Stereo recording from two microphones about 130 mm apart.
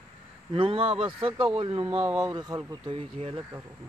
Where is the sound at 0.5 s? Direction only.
45° right (ahead or behind).